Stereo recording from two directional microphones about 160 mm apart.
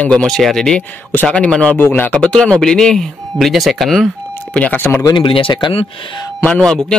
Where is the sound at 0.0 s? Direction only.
5° left (ahead or behind).